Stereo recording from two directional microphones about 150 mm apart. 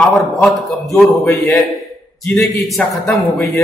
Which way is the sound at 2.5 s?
Centre (ahead or behind).